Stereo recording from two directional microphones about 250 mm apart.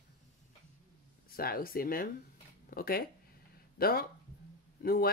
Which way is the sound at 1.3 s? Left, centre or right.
Left.